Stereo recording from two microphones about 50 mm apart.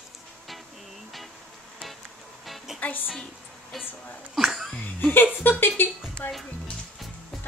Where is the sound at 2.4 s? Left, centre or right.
Centre.